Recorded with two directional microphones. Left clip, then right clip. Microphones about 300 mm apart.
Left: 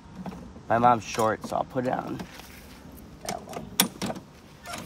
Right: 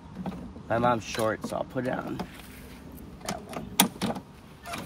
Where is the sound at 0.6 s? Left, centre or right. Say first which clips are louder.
Left 5 dB; centre.